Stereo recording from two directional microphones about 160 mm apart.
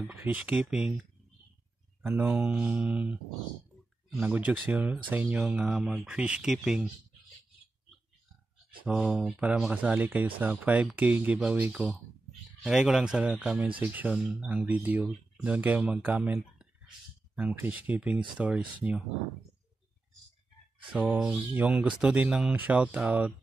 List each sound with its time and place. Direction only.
0.0 s speech: 10° right (ahead or behind)
2.0 s speech: 10° right (ahead or behind)
8.8 s speech: 10° right (ahead or behind)
20.9 s speech: 10° right (ahead or behind)